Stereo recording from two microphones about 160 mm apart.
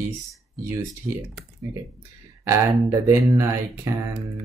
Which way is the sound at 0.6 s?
15° right (ahead or behind).